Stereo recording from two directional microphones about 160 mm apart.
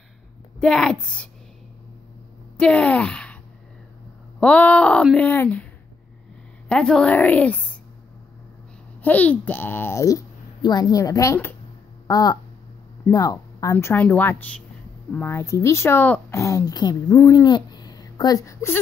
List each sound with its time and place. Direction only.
0.6 s a woman's voice: 5° left (ahead or behind)
2.5 s speech: 5° left (ahead or behind)
4.4 s a child's voice: 10° left (ahead or behind)
6.7 s a child's voice: 5° left (ahead or behind)
9.0 s a child's voice: 10° left (ahead or behind)